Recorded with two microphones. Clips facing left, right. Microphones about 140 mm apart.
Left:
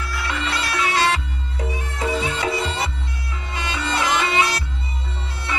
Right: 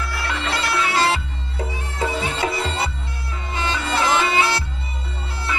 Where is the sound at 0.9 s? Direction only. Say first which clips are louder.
Even; 30° right (ahead or behind).